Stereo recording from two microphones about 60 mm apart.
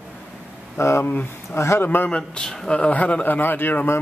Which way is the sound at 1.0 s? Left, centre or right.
Left.